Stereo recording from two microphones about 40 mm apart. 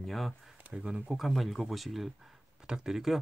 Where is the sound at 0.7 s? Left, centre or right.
Right.